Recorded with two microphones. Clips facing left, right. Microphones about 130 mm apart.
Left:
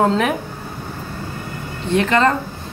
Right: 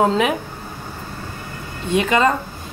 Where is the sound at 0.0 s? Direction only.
5° right (ahead or behind).